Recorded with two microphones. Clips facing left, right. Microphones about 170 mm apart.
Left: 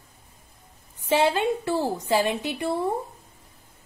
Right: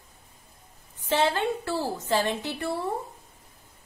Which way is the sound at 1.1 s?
15° left (ahead or behind).